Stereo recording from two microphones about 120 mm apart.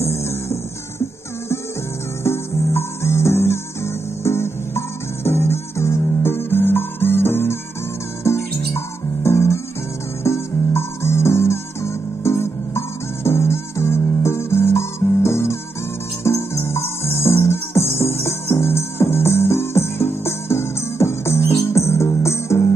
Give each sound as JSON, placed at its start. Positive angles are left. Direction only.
{"t": 0.0, "sound": "music", "side_deg": 20}
{"t": 2.2, "sound": "music", "side_deg": 20}